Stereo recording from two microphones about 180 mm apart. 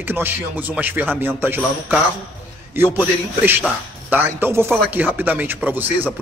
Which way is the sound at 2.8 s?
10° right (ahead or behind).